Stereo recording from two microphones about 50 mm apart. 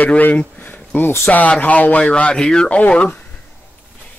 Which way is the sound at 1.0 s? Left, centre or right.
Left.